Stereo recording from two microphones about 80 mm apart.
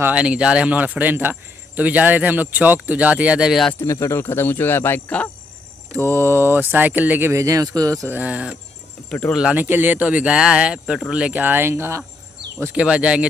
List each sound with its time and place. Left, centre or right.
0.1 s speech: centre
3.8 s speech: left; by 5.3 s centre
5.9 s speech: right
7.3 s speech: right
8.2 s speech: centre
9.6 s speech: right
12.7 s speech: centre